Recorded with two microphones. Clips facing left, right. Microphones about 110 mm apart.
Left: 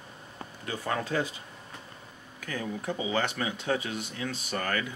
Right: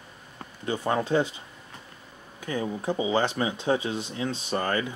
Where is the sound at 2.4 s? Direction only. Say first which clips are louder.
Right 5 dB; 25° right (ahead or behind).